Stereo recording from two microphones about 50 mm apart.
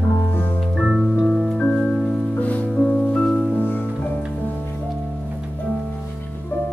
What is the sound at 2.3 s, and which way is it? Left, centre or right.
Music, left.